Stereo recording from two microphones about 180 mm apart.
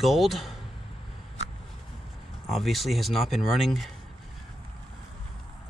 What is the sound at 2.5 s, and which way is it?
Speech, centre (ahead or behind).